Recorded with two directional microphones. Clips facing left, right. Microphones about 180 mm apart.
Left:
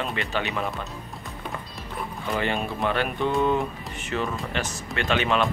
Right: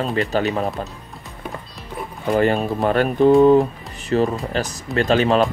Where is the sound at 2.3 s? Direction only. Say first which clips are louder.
Right 9 dB; 40° right (ahead or behind).